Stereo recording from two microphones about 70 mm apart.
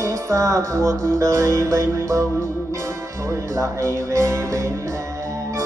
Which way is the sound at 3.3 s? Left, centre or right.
Right.